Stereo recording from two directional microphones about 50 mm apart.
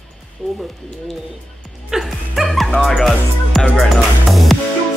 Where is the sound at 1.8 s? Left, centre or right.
Centre.